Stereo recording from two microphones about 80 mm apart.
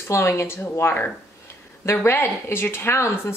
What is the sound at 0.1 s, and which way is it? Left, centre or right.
A woman's voice, left.